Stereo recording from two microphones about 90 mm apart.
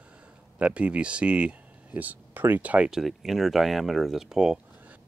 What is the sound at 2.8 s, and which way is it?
Speech, 5° right (ahead or behind).